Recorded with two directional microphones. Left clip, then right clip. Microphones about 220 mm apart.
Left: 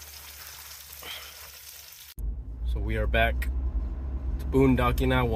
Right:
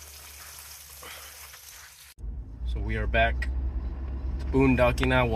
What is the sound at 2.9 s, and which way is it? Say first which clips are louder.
Speech: right 1 dB; 10° left (ahead or behind).